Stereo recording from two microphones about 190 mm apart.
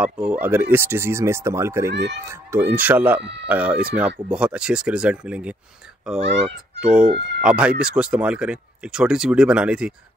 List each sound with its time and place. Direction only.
0.0 s speech: 5° right (ahead or behind)
1.9 s speech: 65° right (ahead or behind)
2.2 s speech: 15° right (ahead or behind)